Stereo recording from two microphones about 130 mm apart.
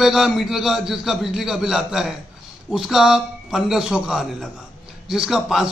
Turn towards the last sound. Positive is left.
turn(degrees=-5)  # may be behind; listen again after turning